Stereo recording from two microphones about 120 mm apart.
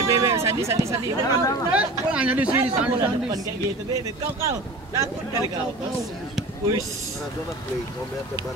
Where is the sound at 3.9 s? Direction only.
25° right (ahead or behind).